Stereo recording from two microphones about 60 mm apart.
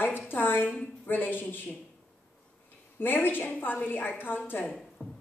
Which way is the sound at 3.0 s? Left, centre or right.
Left.